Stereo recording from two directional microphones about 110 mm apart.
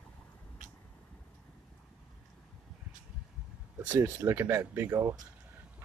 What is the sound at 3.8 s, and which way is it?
Speech, 20° right (ahead or behind).